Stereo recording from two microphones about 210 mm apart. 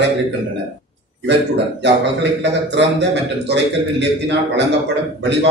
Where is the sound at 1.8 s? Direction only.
55° right (ahead or behind).